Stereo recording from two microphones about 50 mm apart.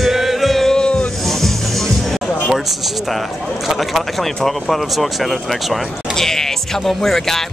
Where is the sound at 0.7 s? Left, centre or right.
Centre.